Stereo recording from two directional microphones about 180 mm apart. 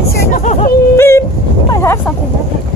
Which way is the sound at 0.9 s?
15° left (ahead or behind).